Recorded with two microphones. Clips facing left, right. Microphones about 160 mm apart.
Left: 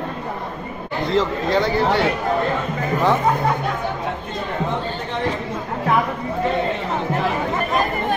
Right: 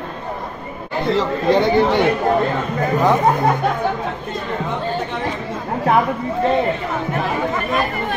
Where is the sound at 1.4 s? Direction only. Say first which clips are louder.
Right 4 dB; 20° right (ahead or behind).